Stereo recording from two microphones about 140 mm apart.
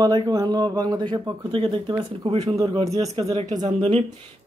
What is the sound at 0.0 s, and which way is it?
A man's voice, 30° right (ahead or behind).